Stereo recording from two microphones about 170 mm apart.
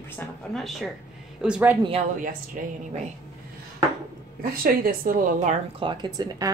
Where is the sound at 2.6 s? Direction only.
50° right (ahead or behind).